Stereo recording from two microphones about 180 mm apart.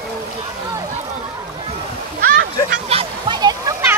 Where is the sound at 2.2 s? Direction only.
55° right (ahead or behind).